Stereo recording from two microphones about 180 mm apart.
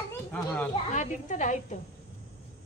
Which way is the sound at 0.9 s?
45° left (ahead or behind).